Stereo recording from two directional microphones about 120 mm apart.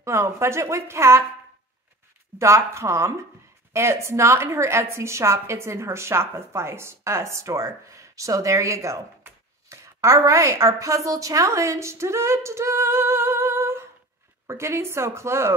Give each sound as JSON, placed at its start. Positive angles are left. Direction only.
{"t": 0.0, "sound": "a woman's voice", "side_deg": -25}
{"t": 2.3, "sound": "a woman's voice", "side_deg": -25}